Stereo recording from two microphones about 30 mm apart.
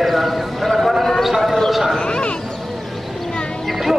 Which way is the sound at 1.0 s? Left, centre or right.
Centre.